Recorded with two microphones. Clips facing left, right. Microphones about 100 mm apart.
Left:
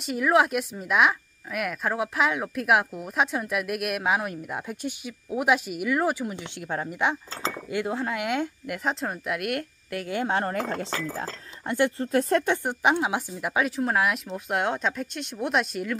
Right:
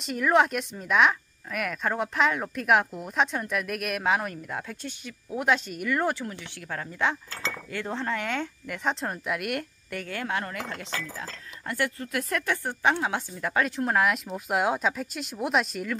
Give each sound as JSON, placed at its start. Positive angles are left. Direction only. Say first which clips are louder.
{"t": 0.0, "sound": "a woman's voice", "louder": "left 1 dB", "side_deg": 5}
{"t": 10.2, "sound": "speech", "louder": "left 6 dB", "side_deg": 35}
{"t": 12.6, "sound": "a woman's voice", "louder": "left 2 dB", "side_deg": 15}